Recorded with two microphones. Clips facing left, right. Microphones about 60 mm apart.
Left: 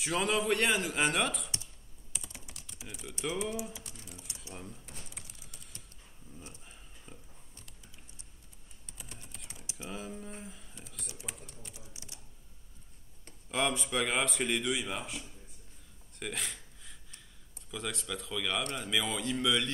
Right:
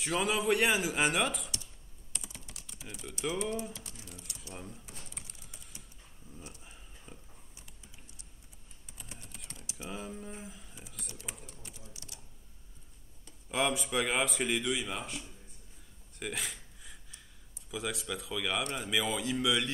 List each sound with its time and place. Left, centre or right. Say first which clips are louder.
0.0 s speech: even; centre
2.1 s computer keyboard: even; centre
2.5 s typing: even; centre
2.9 s speech: right 1 dB; centre
4.6 s a sound: even; centre
6.6 s a sound: right 1 dB; centre
9.3 s typing: right 1 dB; centre
9.8 s a sound: even; centre
11.2 s typing: even; centre
11.9 s typing: even; left
13.5 s speech: right 1 dB; centre
16.2 s a sound: right 1 dB; centre
17.6 s speech: right 2 dB; centre